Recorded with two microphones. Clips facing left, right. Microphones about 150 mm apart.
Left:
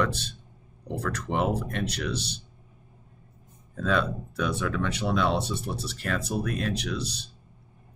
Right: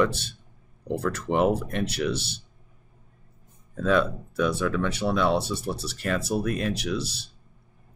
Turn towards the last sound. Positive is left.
turn(degrees=-5)  # may be behind; listen again after turning